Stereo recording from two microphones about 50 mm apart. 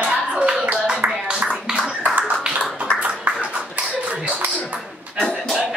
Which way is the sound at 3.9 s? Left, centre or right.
Right.